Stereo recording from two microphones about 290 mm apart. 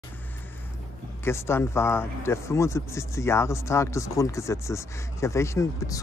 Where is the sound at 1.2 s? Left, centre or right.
Centre.